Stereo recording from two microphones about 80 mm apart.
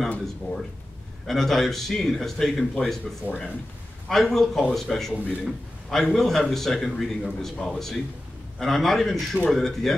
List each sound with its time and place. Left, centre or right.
1.2 s a man's voice: centre
3.3 s speech: centre
4.1 s a man's voice: centre